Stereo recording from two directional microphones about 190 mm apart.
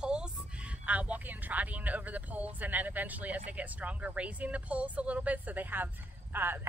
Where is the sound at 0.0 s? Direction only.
5° right (ahead or behind).